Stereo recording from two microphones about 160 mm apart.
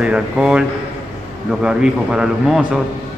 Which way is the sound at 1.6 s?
5° right (ahead or behind).